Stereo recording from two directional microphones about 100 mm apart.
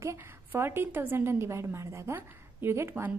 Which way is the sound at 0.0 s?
30° right (ahead or behind).